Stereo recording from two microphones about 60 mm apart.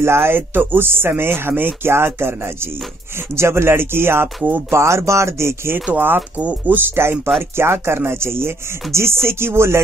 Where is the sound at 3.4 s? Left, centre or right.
Right.